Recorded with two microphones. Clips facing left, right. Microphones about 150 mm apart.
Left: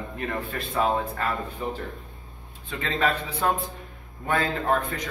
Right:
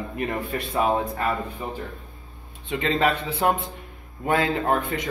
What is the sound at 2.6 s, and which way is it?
Speech, 20° right (ahead or behind).